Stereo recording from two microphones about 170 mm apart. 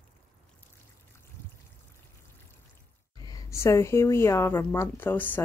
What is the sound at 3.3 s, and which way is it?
A woman's voice, 15° left (ahead or behind).